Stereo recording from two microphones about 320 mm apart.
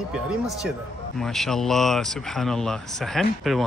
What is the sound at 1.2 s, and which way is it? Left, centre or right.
Speech, centre.